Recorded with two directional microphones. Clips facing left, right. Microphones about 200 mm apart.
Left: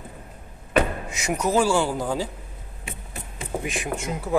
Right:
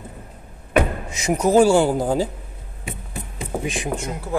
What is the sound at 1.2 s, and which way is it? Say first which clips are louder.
Speech: right 6 dB; 35° right (ahead or behind).